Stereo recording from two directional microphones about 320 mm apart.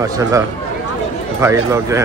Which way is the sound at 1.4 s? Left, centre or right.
Centre.